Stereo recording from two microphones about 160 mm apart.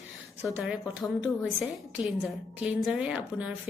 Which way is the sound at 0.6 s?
5° right (ahead or behind).